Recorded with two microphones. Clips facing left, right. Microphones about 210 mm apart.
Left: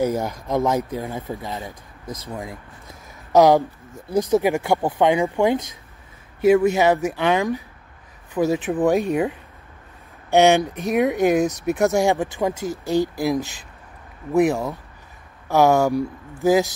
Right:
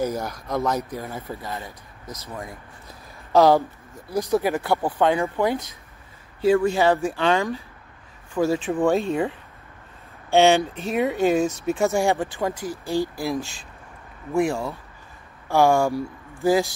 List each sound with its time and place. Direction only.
0.2 s speech: 20° left (ahead or behind)
0.9 s speech: 15° left (ahead or behind)
6.6 s speech: 20° left (ahead or behind)
10.3 s speech: 15° left (ahead or behind)